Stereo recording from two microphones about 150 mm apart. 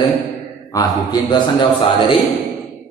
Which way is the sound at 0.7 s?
25° left (ahead or behind).